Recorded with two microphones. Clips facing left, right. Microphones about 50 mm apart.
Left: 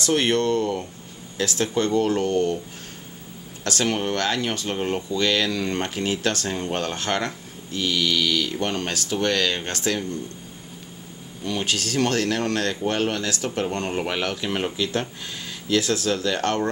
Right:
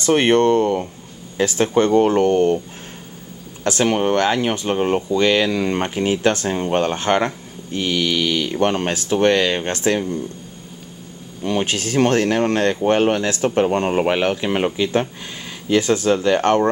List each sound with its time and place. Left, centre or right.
0.0 s speech: right
3.6 s speech: centre
11.4 s speech: right